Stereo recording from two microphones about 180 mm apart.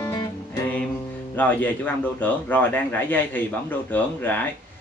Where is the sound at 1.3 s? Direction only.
10° left (ahead or behind).